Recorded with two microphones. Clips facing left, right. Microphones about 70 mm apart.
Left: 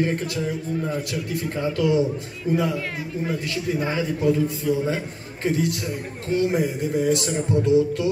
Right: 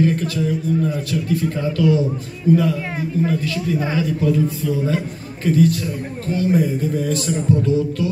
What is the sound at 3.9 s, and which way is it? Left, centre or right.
Speech, left.